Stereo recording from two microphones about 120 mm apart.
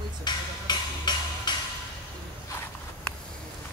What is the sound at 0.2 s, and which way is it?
Music, 35° left (ahead or behind).